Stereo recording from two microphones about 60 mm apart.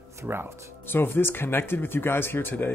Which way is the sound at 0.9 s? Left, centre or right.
Left.